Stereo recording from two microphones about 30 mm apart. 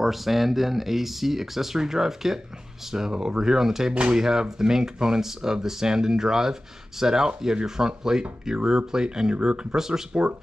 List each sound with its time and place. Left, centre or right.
0.0 s speech: centre
3.1 s speech: right
3.9 s speech: right
4.2 s speech: centre
9.8 s speech: centre